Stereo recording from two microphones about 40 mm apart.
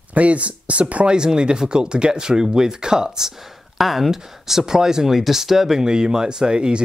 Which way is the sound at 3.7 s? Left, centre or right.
Centre.